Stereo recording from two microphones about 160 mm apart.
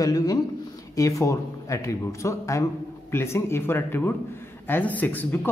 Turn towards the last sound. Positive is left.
turn(degrees=10)  # may be behind; listen again after turning